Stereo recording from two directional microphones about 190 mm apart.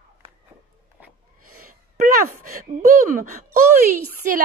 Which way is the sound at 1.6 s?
45° right (ahead or behind).